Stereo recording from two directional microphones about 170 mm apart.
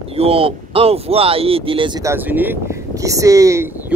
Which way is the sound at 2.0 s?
15° right (ahead or behind).